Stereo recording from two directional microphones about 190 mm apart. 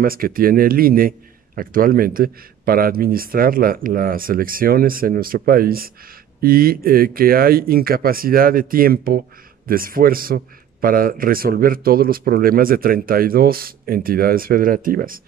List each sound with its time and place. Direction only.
0.0 s a man's voice: 50° right (ahead or behind)